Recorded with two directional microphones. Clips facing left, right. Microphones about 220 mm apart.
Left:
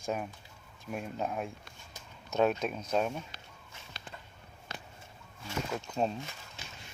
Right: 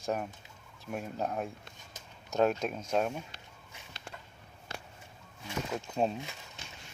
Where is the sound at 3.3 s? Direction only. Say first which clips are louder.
Even; 25° right (ahead or behind).